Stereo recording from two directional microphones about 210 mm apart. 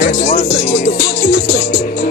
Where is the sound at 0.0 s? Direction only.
55° left (ahead or behind).